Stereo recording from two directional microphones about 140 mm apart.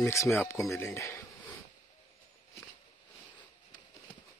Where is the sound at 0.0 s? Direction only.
20° left (ahead or behind).